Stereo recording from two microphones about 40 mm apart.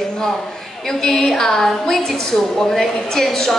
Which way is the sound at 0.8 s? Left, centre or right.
Centre.